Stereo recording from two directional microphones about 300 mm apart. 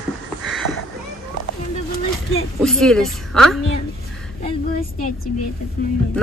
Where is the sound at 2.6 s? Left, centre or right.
Centre.